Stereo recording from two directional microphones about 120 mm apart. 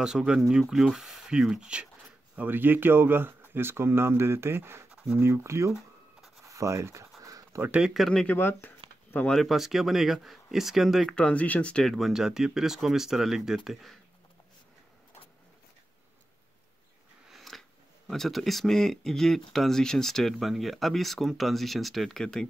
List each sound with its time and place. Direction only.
0.0 s speech: 5° right (ahead or behind)
4.9 s a sound: 10° right (ahead or behind)
5.2 s speech: 25° right (ahead or behind)
7.2 s a sound: 25° right (ahead or behind)
7.6 s speech: 10° right (ahead or behind)
7.9 s speech: centre (ahead or behind)
17.3 s speech: centre (ahead or behind)